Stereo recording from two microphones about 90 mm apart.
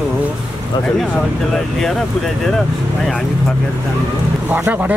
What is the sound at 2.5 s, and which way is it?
Speech, 5° left (ahead or behind).